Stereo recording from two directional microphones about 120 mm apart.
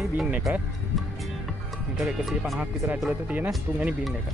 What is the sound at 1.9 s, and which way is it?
Speech, centre (ahead or behind).